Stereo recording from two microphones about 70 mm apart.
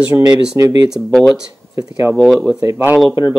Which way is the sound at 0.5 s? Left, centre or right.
Right.